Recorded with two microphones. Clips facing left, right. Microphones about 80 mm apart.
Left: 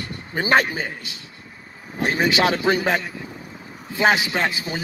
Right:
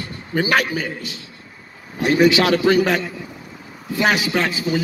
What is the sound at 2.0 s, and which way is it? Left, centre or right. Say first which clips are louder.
A man's voice: right 5 dB; left.